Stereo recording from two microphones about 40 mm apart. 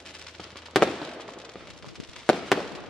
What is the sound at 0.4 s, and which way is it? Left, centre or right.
Fireworks, centre.